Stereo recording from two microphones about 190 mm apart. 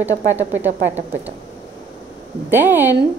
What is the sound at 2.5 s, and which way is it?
Speech, 10° right (ahead or behind).